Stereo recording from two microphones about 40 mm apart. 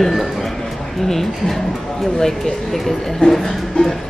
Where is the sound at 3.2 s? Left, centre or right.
Left.